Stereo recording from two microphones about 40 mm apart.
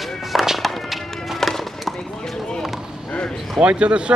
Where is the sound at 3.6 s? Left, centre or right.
Right.